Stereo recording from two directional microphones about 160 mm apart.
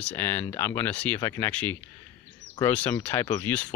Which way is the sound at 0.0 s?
15° left (ahead or behind).